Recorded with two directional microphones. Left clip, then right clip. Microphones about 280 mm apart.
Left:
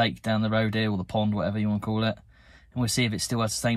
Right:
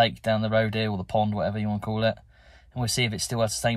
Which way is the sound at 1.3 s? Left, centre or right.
Centre.